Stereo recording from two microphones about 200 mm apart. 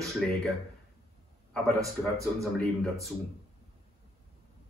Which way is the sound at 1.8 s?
15° right (ahead or behind).